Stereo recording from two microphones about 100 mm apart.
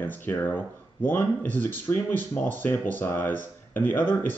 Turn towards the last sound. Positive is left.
turn(degrees=20)  # may be behind; listen again after turning